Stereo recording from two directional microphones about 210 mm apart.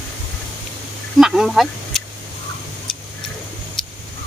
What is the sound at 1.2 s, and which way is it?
Speech, centre (ahead or behind).